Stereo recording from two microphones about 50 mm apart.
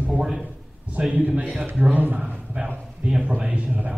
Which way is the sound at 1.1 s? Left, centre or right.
Right.